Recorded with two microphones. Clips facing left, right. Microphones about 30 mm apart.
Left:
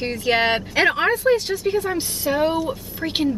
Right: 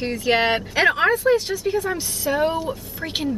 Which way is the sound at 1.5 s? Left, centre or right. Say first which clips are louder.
Left 1 dB; left.